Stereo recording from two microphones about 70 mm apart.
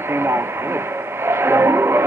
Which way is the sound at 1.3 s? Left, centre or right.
Right.